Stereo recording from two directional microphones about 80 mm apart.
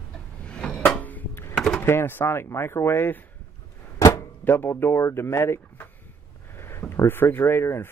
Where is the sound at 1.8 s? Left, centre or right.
Left.